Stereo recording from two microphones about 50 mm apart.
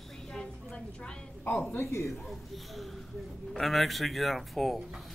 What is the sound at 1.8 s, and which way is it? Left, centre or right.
Speech, left.